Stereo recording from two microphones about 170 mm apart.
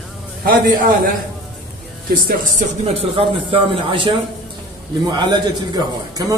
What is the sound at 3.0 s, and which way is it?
A man's voice, 35° right (ahead or behind).